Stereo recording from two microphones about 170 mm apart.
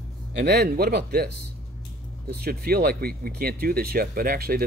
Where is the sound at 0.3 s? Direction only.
80° right.